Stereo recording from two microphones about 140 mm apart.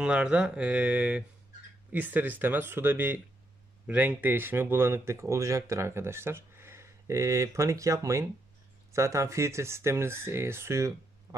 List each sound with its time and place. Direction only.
0.0 s speech: 5° right (ahead or behind)